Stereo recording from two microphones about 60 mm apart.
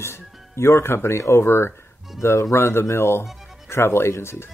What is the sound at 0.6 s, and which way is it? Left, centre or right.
Speech, left.